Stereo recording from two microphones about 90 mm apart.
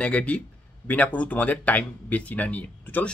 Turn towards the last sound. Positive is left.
turn(degrees=15)  # may be behind; listen again after turning